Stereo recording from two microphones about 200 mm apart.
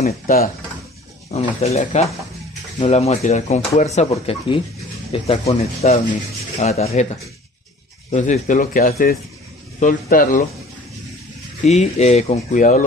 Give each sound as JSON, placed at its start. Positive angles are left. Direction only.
{"t": 0.3, "sound": "speech", "side_deg": 45}
{"t": 1.3, "sound": "speech", "side_deg": 30}
{"t": 8.1, "sound": "speech", "side_deg": 35}
{"t": 11.6, "sound": "speech", "side_deg": 35}